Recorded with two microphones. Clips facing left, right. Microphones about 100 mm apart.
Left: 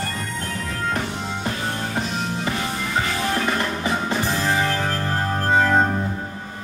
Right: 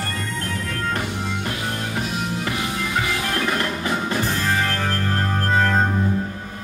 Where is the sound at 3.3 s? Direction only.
15° left (ahead or behind).